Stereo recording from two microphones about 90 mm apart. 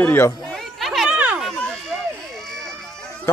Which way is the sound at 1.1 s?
15° right (ahead or behind).